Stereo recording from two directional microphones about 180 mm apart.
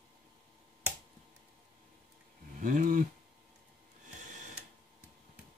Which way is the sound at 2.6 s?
50° right (ahead or behind).